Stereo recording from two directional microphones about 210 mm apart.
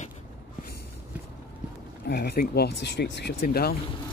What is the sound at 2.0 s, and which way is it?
Speech, 45° left (ahead or behind).